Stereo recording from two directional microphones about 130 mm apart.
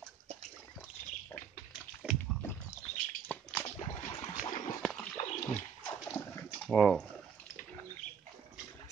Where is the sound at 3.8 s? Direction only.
35° left (ahead or behind).